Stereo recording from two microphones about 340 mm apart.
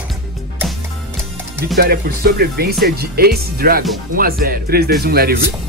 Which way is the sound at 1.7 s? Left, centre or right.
Right.